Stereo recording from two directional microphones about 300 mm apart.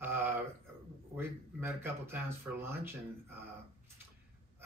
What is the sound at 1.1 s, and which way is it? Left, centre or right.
Speech, centre.